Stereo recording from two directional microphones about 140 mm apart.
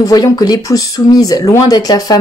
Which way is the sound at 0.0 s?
25° left (ahead or behind).